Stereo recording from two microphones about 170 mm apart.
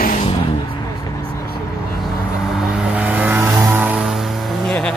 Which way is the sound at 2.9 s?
10° right (ahead or behind).